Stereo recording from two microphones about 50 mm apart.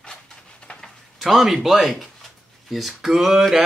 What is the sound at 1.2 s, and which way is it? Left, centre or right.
Speech, centre.